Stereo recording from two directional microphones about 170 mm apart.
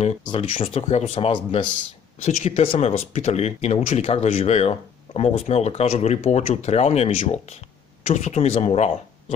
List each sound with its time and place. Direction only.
0.2 s speech: 30° left (ahead or behind)
2.2 s speech: 40° left (ahead or behind)